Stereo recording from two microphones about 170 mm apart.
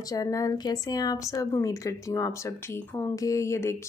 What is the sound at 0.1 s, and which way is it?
A woman's voice, 20° left (ahead or behind).